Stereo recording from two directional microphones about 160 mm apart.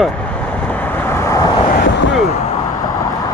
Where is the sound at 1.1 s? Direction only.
15° left (ahead or behind).